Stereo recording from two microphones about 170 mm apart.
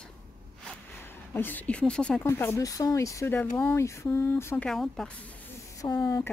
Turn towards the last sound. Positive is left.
turn(degrees=20)  # may be behind; listen again after turning